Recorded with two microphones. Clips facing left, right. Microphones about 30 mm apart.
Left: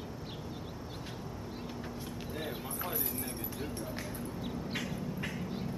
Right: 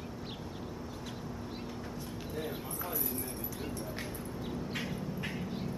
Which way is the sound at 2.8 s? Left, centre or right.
Left.